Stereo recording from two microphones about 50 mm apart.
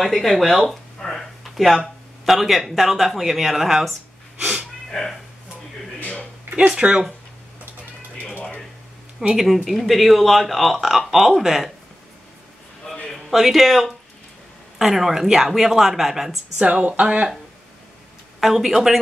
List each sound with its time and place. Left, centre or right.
0.0 s speech: centre
4.4 s speech: centre
4.8 s a sound: centre
6.7 s speech: centre
9.3 s speech: centre
12.8 s a sound: centre
13.1 s speech: centre
16.5 s speech: right
18.4 s speech: centre